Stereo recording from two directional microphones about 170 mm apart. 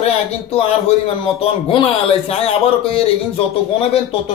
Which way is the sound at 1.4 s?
35° left (ahead or behind).